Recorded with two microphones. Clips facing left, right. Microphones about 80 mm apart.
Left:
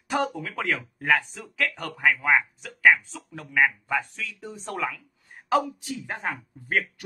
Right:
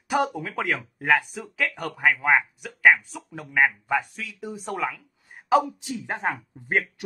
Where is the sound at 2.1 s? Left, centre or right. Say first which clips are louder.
Right 1 dB; centre.